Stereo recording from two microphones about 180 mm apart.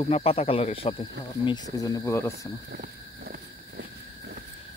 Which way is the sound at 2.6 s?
60° right (ahead or behind).